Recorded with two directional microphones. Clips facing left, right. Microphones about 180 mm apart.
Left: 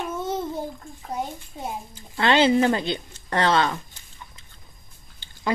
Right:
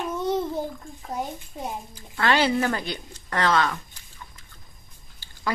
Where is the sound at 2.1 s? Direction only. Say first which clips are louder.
Left 4 dB; 20° left (ahead or behind).